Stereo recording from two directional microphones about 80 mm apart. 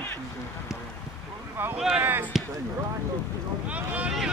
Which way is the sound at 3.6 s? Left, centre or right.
Centre.